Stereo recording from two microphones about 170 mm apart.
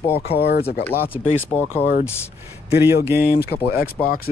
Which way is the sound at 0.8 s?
10° left (ahead or behind).